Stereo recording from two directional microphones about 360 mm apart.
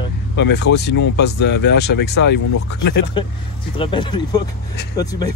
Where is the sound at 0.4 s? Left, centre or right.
Left.